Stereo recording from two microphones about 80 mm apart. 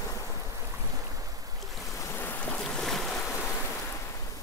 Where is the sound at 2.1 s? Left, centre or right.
Left.